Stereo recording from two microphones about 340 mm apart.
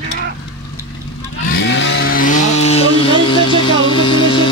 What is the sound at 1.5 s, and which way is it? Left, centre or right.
Vehicle, left.